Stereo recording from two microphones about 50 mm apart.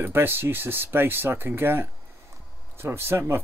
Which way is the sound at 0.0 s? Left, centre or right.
Right.